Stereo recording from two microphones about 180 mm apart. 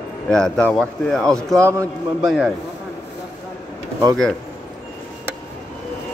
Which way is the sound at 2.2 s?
Centre (ahead or behind).